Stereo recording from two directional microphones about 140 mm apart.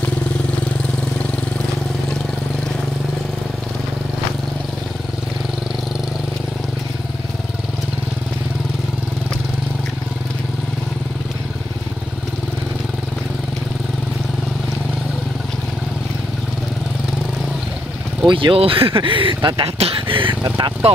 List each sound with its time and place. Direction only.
18.2 s speech: 35° right (ahead or behind)